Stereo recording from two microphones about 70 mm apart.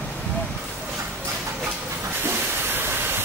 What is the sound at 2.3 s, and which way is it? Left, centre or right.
Steam, right.